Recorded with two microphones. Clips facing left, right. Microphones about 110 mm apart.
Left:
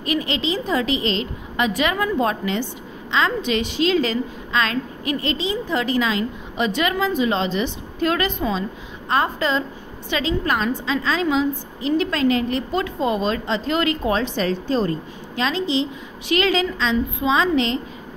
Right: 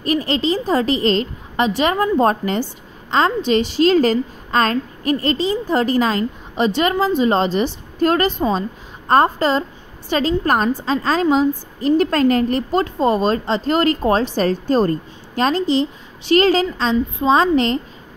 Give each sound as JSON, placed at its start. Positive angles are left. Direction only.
{"t": 0.0, "sound": "a woman's voice", "side_deg": -40}